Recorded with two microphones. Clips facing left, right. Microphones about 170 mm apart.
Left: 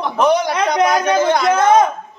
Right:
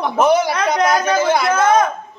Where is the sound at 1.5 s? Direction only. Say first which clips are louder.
Left 3 dB; 20° left (ahead or behind).